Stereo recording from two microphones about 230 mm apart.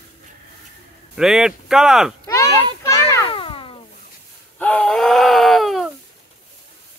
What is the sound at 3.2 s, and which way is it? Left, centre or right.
Music, left.